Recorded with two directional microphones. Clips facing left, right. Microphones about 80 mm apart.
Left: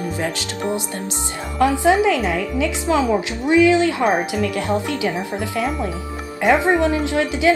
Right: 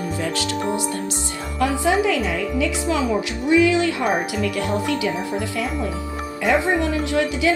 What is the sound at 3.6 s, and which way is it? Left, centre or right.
Speech, left.